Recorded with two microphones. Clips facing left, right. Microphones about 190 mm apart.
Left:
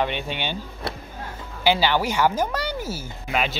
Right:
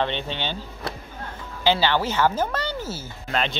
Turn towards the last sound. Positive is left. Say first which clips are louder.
# left 1 dB
turn(degrees=10)  # may be behind; listen again after turning